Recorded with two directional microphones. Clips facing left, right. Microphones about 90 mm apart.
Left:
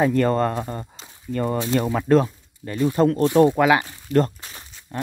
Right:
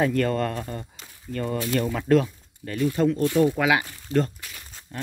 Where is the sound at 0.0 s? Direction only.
30° left (ahead or behind).